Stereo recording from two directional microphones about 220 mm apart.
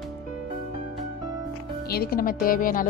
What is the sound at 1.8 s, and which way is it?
Music, 45° left (ahead or behind).